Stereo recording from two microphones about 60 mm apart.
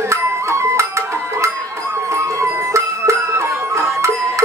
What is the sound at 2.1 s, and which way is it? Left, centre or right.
Music, right.